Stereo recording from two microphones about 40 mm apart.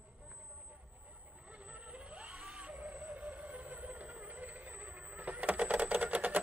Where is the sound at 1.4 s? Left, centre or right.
Right.